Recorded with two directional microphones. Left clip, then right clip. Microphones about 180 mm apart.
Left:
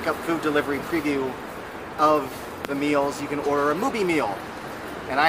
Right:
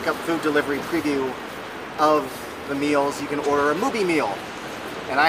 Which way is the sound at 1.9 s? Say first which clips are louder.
Right 1 dB; 5° left (ahead or behind).